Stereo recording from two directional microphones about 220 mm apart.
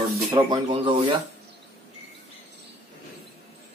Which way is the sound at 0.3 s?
20° right (ahead or behind).